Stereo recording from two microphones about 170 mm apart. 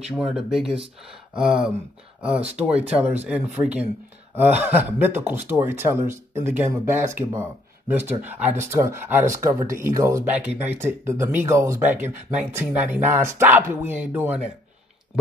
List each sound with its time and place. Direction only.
0.1 s speech: 5° right (ahead or behind)